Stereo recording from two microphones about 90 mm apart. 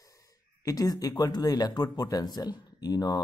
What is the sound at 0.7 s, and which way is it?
Speech, 40° left (ahead or behind).